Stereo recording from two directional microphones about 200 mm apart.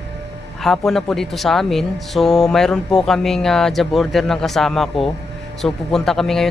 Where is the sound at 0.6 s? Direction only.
Centre (ahead or behind).